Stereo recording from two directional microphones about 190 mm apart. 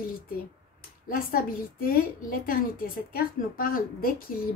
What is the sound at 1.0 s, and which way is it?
A woman's voice, 50° left (ahead or behind).